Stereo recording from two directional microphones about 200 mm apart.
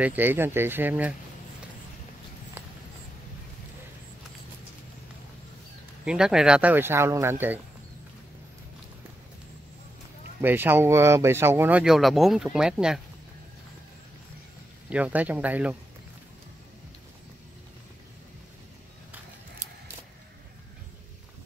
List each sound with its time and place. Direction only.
0.0 s speech: 10° right (ahead or behind)
6.0 s speech: 5° right (ahead or behind)
10.4 s speech: 10° right (ahead or behind)
14.9 s speech: 5° right (ahead or behind)